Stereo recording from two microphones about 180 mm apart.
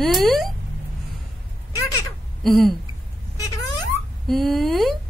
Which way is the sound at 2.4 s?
Centre (ahead or behind).